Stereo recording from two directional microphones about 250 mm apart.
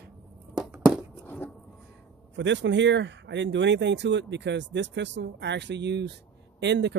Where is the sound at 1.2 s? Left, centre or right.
Centre.